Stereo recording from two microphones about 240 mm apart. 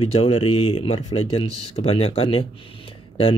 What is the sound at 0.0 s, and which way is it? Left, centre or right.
Speech, left.